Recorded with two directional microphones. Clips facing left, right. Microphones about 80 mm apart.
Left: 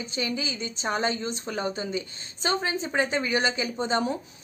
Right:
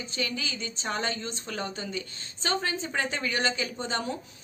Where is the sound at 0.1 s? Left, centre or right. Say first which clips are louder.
Left 3 dB; centre.